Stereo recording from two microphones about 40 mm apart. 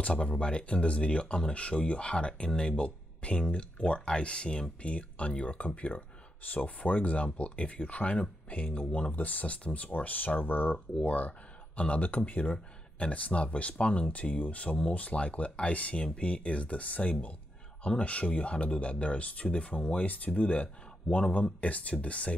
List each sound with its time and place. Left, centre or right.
0.1 s speech: left
11.1 s a sound: left
11.8 s speech: left